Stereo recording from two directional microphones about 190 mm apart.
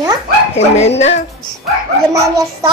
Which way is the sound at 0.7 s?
35° left (ahead or behind).